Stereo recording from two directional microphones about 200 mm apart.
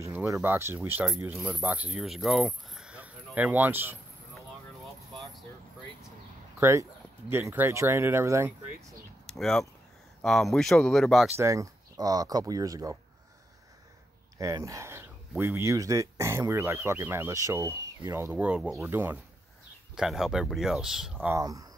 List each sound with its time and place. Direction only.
0.0 s speech: 10° right (ahead or behind)
6.6 s speech: 15° right (ahead or behind)
9.2 s speech: centre (ahead or behind)
11.3 s speech: 15° right (ahead or behind)
14.4 s speech: 15° right (ahead or behind)
21.4 s speech: 15° right (ahead or behind)